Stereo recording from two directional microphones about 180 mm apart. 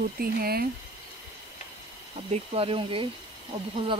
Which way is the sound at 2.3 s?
30° right (ahead or behind).